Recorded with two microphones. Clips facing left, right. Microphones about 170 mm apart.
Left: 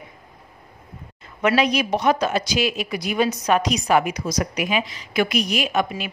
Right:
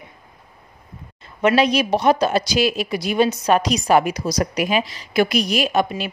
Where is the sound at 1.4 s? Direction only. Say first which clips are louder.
Right 3 dB; 30° right (ahead or behind).